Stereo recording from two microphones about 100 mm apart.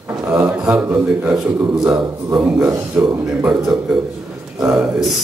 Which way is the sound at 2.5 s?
25° right (ahead or behind).